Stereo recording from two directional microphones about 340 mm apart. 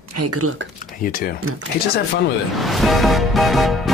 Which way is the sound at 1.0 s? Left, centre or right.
Left.